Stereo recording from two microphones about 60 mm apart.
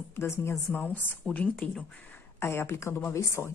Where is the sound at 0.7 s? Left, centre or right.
Left.